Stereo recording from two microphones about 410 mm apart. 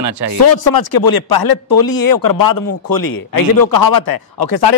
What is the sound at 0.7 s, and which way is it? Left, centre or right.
Speech, left.